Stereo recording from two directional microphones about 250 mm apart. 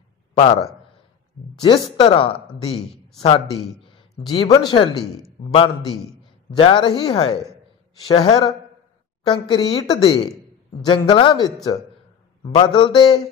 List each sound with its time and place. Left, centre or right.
0.4 s speech: left
2.0 s a woman's voice: left
6.5 s a woman's voice: centre